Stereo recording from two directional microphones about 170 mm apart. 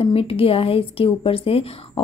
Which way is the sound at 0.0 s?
35° left (ahead or behind).